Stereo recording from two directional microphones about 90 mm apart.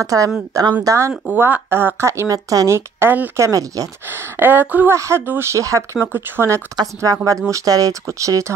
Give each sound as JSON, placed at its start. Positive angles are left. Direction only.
{"t": 0.0, "sound": "speech", "side_deg": -35}
{"t": 3.0, "sound": "speech", "side_deg": -25}
{"t": 3.3, "sound": "speech", "side_deg": -40}
{"t": 4.1, "sound": "a woman's voice", "side_deg": -20}
{"t": 4.9, "sound": "speech", "side_deg": -30}
{"t": 6.8, "sound": "speech", "side_deg": -40}